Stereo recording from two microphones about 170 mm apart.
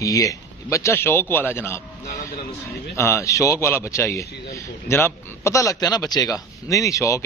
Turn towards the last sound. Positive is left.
turn(degrees=20)  # may be behind; listen again after turning